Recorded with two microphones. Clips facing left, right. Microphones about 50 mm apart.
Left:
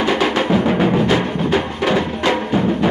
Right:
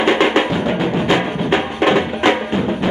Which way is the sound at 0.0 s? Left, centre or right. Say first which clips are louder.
Right 3 dB; right.